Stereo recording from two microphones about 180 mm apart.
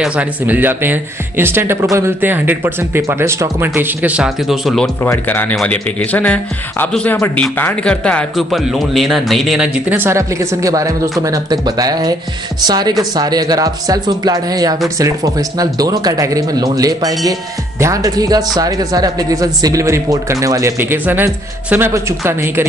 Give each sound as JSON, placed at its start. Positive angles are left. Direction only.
{"t": 0.0, "sound": "speech", "side_deg": -5}
{"t": 5.0, "sound": "speech", "side_deg": 10}